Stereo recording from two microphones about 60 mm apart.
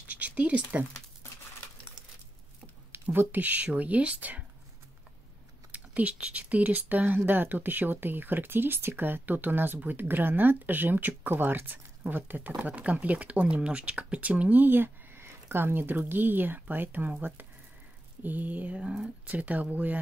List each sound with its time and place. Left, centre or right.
0.1 s a sound: right
2.9 s speech: right
5.7 s speech: right
18.2 s speech: right
18.8 s speech: centre
19.2 s speech: right